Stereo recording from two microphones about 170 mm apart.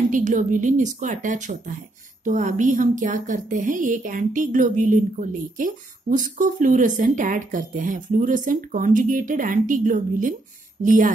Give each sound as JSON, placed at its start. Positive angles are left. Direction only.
{"t": 0.1, "sound": "a woman's voice", "side_deg": -50}